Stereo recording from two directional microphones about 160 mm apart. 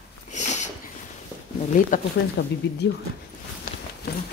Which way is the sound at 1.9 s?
60° left (ahead or behind).